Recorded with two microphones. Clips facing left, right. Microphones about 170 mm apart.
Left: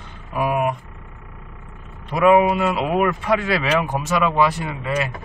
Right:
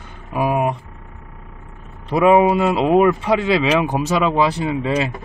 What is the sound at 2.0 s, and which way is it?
Speech, 25° right (ahead or behind).